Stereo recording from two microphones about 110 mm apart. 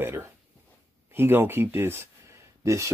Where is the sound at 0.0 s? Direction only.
20° right (ahead or behind).